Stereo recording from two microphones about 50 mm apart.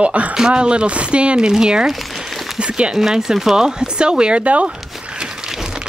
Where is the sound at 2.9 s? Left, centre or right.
Centre; by 4.7 s right.